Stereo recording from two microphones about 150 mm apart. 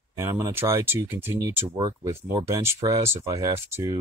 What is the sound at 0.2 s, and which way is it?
Speech, 15° right (ahead or behind).